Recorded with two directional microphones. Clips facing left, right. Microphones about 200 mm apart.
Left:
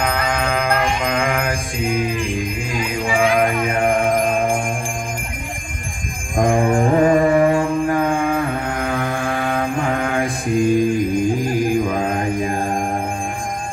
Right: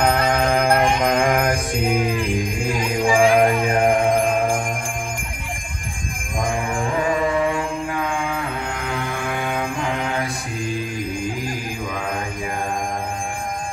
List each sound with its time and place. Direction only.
0.2 s music: 40° right (ahead or behind)
0.6 s mantra: 35° right (ahead or behind)
3.1 s music: 30° right (ahead or behind)
6.7 s music: 40° left (ahead or behind)